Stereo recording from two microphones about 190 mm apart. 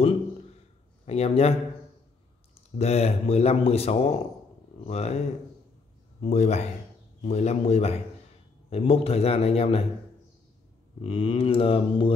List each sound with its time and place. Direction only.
1.0 s speech: 35° left (ahead or behind)
2.8 s speech: 35° left (ahead or behind)
6.2 s speech: 35° left (ahead or behind)
11.1 s mantra: 30° left (ahead or behind)